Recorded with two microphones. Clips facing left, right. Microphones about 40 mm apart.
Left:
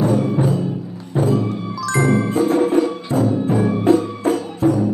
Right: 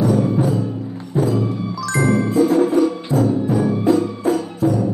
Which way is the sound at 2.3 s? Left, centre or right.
Left.